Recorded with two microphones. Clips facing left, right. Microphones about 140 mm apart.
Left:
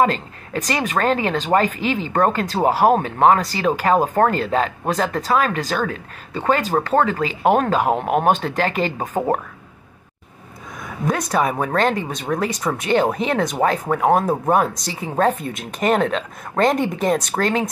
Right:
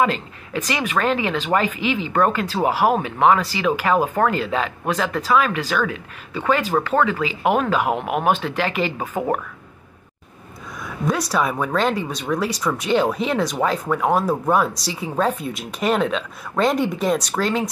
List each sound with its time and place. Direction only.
0.0 s speech: 40° left (ahead or behind)
11.1 s speech: 50° left (ahead or behind)
14.9 s a woman's voice: 5° right (ahead or behind)
15.5 s speech: 50° left (ahead or behind)